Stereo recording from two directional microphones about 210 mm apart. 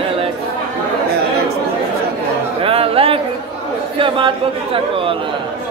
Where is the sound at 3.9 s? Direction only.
25° right (ahead or behind).